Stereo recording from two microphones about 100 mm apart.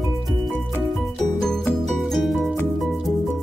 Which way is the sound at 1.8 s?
Centre (ahead or behind).